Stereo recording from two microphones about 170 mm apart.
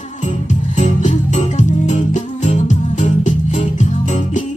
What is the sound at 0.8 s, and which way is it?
Music, 45° left (ahead or behind).